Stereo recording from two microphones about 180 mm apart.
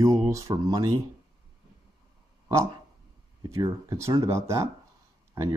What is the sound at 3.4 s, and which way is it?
Speech, 15° right (ahead or behind).